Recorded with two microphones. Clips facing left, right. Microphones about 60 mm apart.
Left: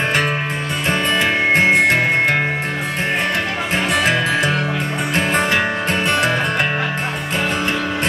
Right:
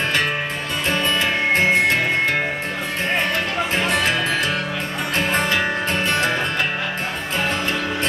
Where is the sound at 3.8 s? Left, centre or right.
Left.